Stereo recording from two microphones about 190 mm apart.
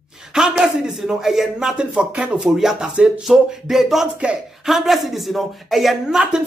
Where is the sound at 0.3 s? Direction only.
5° right (ahead or behind).